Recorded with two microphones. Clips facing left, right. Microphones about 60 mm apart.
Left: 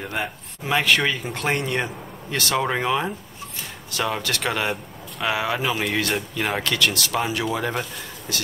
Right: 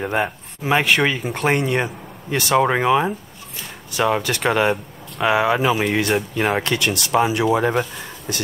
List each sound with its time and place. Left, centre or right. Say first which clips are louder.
0.0 s speech: right 7 dB; right; by 6.6 s centre
6.6 s speech: right 1 dB; right